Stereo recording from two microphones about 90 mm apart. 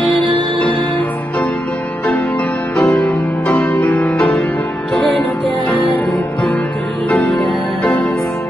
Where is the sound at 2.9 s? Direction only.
15° left (ahead or behind).